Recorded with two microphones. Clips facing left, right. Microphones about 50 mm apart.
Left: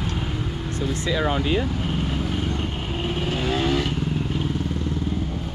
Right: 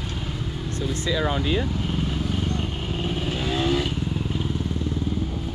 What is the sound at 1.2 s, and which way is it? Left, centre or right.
Speech, left.